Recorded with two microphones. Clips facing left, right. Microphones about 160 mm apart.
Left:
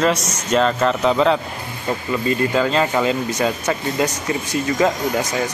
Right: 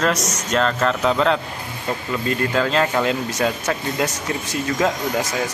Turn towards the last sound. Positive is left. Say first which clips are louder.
# left 2 dB
turn(degrees=0)  # may be behind; listen again after turning